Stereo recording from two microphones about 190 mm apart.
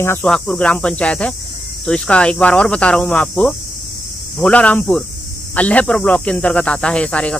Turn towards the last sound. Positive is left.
turn(degrees=5)  # may be behind; listen again after turning